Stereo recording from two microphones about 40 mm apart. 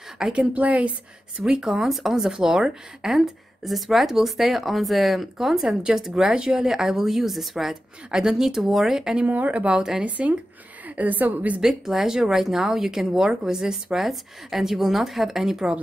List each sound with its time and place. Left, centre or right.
0.2 s a woman's voice: right
1.4 s speech: centre
1.9 s speech: centre
3.2 s speech: centre
9.3 s a woman's voice: right
11.0 s a woman's voice: right
11.6 s speech: centre